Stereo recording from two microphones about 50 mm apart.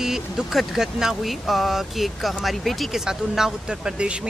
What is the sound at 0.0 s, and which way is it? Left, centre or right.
Speech, centre.